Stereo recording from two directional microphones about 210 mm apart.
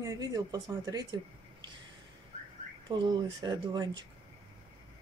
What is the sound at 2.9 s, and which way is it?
Speech, 20° right (ahead or behind).